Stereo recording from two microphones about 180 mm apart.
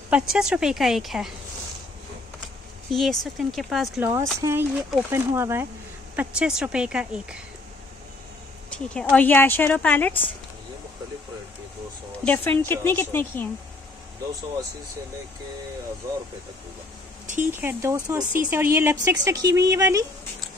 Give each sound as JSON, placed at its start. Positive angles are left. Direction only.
{"t": 0.1, "sound": "a woman's voice", "side_deg": -5}
{"t": 2.9, "sound": "a woman's voice", "side_deg": 0}
{"t": 4.0, "sound": "a woman's voice", "side_deg": -15}
{"t": 9.1, "sound": "a woman's voice", "side_deg": 10}
{"t": 12.3, "sound": "a woman's voice", "side_deg": 10}
{"t": 17.5, "sound": "speech", "side_deg": -10}